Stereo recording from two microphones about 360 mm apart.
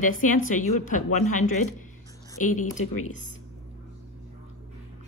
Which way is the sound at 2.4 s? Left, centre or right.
Left.